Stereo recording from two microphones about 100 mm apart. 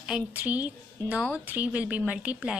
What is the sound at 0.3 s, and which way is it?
A woman's voice, 15° right (ahead or behind).